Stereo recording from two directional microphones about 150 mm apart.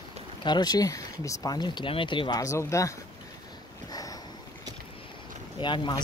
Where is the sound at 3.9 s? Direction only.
25° left (ahead or behind).